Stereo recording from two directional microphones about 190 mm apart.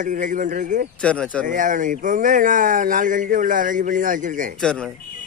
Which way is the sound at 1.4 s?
45° right (ahead or behind).